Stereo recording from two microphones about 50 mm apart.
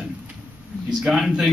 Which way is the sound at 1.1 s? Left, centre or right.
Centre.